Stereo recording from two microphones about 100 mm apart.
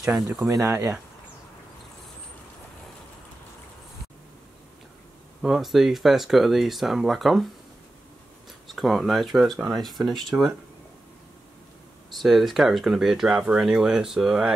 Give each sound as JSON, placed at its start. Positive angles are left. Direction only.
{"t": 0.0, "sound": "speech", "side_deg": 0}
{"t": 0.4, "sound": "speech", "side_deg": -30}
{"t": 5.4, "sound": "speech", "side_deg": -5}
{"t": 8.6, "sound": "speech", "side_deg": 0}
{"t": 12.2, "sound": "speech", "side_deg": 0}